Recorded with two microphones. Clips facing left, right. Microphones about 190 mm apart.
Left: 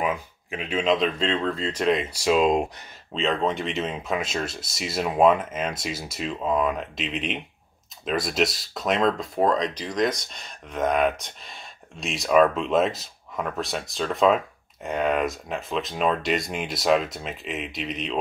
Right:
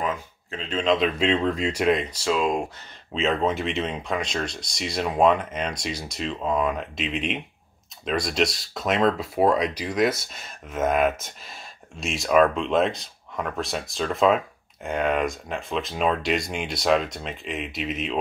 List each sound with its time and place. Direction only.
0.0 s speech: 10° left (ahead or behind); by 2.0 s 5° right (ahead or behind)
2.0 s speech: 15° left (ahead or behind)
3.1 s speech: centre (ahead or behind)